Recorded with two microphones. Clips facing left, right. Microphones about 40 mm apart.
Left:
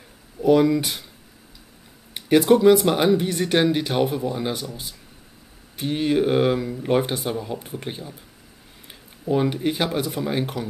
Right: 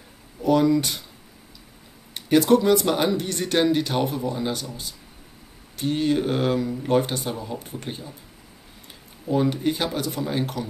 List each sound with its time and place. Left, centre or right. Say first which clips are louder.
0.4 s speech: left 2 dB; centre
2.1 s speech: left 1 dB; centre
5.8 s speech: left 1 dB; centre